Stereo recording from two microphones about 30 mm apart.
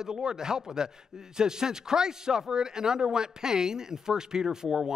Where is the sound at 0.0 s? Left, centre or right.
Right.